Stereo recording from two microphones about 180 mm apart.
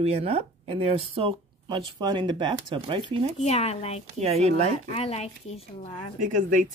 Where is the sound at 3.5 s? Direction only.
35° left (ahead or behind).